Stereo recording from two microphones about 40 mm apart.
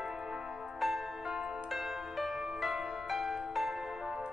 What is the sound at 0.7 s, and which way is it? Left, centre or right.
Music, centre.